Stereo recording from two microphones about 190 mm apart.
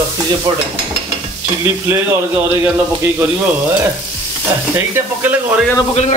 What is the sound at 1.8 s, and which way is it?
Speech, 15° right (ahead or behind).